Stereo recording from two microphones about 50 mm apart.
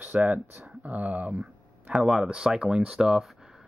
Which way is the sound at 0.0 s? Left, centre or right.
Right.